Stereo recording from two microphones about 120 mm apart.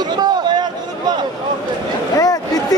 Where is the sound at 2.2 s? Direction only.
30° left (ahead or behind).